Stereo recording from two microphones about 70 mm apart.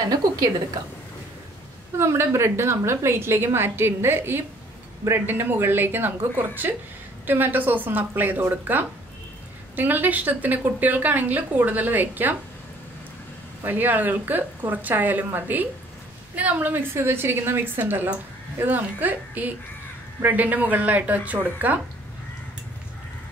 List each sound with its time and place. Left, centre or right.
2.0 s a woman's voice: right
13.7 s a woman's voice: right